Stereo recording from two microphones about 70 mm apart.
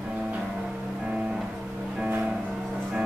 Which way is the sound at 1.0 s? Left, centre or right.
Centre.